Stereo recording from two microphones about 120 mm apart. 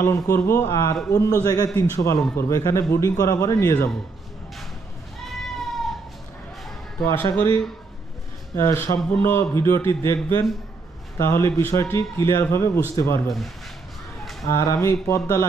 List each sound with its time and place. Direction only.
0.0 s a man's voice: 25° left (ahead or behind)
5.2 s goat: centre (ahead or behind)
7.3 s a man's voice: 20° left (ahead or behind)
14.4 s a man's voice: 25° left (ahead or behind)